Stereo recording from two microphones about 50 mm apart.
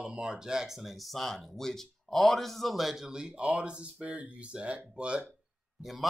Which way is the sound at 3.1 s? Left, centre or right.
Centre.